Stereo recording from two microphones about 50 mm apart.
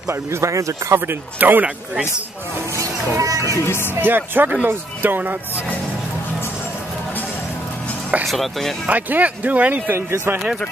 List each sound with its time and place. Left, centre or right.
0.1 s speech: right
0.9 s speech: right
3.2 s speech: right
3.6 s speech: left
4.0 s speech: right
8.3 s speech: centre
8.8 s speech: right